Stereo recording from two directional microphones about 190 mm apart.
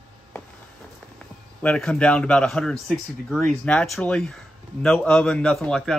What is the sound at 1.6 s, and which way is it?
A man's voice, 5° left (ahead or behind).